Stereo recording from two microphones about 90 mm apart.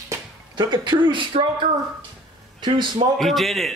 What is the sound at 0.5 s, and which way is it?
A man's voice, 55° right (ahead or behind).